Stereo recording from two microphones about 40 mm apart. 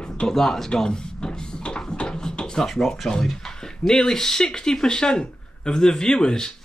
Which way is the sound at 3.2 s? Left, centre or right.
Centre.